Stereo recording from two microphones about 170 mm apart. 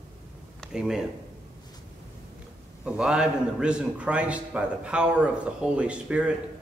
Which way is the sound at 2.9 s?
5° right (ahead or behind).